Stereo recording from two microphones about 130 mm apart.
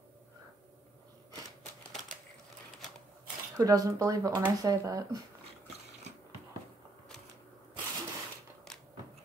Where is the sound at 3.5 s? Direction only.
25° right (ahead or behind).